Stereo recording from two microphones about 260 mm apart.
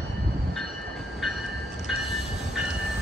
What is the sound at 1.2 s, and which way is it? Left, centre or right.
Train, centre.